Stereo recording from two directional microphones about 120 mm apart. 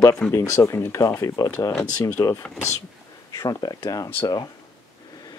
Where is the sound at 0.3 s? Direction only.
25° left (ahead or behind).